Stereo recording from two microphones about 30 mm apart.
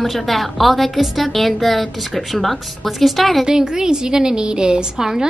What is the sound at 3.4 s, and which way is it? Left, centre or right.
A woman's voice, right.